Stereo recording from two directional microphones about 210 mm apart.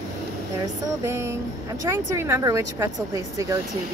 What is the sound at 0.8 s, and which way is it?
Speech, 15° right (ahead or behind).